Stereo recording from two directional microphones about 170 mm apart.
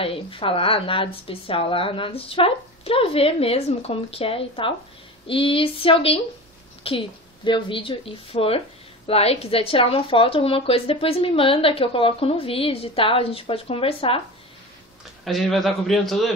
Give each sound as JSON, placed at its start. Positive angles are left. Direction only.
{"t": 0.0, "sound": "a woman's voice", "side_deg": 30}
{"t": 15.2, "sound": "a man's voice", "side_deg": 0}